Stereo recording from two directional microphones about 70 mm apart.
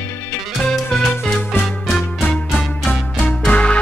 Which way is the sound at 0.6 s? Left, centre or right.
Centre.